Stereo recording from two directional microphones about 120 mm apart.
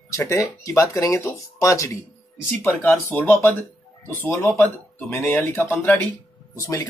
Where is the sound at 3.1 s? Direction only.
20° left (ahead or behind).